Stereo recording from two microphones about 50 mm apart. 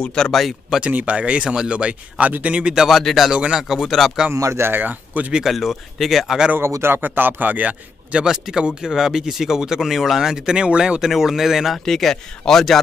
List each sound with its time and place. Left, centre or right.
0.0 s speech: centre
0.4 s speech: centre
0.7 s speech: right
2.9 s speech: centre
4.3 s speech: right
4.6 s a man's voice: right
5.5 s speech: centre
6.6 s a man's voice: right
8.2 s speech: centre
11.1 s speech: centre
11.8 s speech: centre